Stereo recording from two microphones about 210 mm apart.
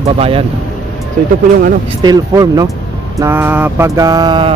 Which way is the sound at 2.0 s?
15° right (ahead or behind).